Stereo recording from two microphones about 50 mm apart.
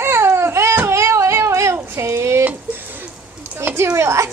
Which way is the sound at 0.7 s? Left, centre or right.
Right.